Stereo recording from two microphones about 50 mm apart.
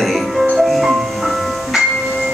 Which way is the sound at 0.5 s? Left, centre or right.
Centre.